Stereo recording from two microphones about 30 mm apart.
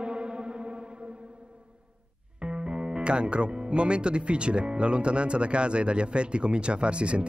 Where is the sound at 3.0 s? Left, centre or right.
Right.